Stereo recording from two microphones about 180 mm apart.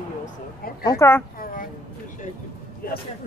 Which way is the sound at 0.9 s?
15° left (ahead or behind).